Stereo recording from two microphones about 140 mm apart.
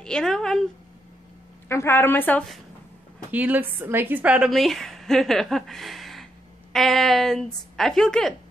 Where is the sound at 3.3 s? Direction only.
10° right (ahead or behind).